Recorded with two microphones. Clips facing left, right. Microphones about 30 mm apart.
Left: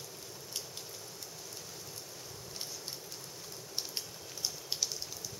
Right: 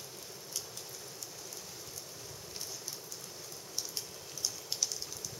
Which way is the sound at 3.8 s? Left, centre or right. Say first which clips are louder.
Left 1 dB; left.